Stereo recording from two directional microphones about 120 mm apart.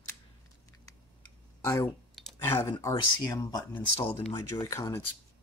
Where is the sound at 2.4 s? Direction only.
20° left (ahead or behind).